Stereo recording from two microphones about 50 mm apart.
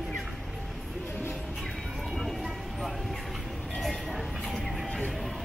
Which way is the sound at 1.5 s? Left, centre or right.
Centre.